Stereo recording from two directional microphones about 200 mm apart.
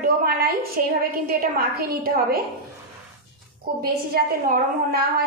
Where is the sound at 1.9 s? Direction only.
50° right (ahead or behind).